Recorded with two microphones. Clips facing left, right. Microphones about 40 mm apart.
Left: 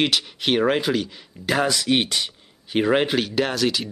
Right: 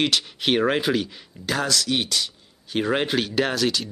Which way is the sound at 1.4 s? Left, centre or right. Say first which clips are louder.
Left 3 dB; centre.